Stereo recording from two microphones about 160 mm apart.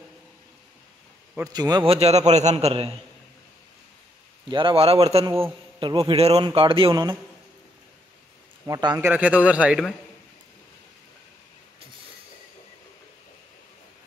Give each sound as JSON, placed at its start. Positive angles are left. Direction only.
{"t": 1.4, "sound": "a man's voice", "side_deg": -25}
{"t": 1.9, "sound": "a man's voice", "side_deg": -40}
{"t": 4.5, "sound": "a man's voice", "side_deg": -30}
{"t": 8.6, "sound": "a man's voice", "side_deg": -25}
{"t": 9.0, "sound": "a man's voice", "side_deg": -10}